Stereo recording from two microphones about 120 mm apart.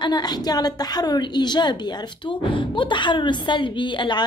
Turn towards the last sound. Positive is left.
turn(degrees=40)  # may be behind; listen again after turning